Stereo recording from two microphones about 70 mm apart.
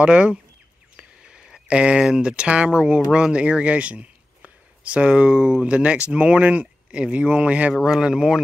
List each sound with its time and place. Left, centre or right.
0.0 s speech: centre